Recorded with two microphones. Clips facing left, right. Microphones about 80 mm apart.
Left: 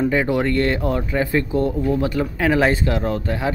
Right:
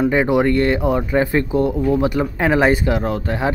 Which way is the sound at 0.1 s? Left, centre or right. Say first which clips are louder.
Right 3 dB; centre.